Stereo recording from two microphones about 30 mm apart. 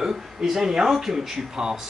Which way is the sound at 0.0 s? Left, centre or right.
Centre.